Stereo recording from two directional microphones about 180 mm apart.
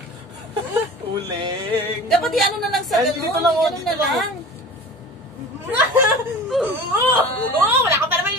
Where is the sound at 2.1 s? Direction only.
Centre (ahead or behind).